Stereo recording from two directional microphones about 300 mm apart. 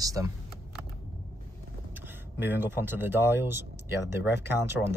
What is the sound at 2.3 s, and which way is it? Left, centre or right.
Speech, centre.